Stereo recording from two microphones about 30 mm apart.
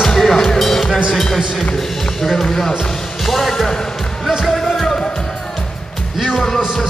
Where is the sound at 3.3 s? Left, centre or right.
Centre.